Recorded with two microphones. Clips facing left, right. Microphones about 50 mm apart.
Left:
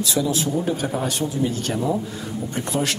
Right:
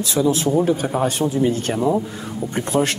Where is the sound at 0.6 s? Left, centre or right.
Centre.